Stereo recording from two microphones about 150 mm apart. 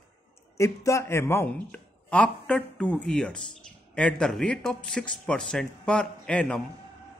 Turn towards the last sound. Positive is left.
turn(degrees=5)  # may be behind; listen again after turning